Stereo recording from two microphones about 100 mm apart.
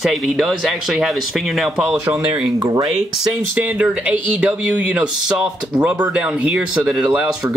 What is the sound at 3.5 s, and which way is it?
Speech, 15° right (ahead or behind).